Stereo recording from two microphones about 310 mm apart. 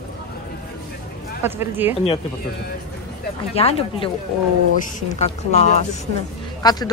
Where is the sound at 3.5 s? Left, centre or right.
Centre.